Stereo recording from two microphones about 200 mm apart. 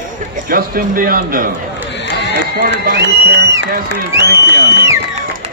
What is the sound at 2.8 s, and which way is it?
Speech, 55° right (ahead or behind).